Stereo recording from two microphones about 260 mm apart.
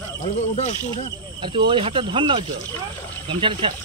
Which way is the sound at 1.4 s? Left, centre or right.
Centre.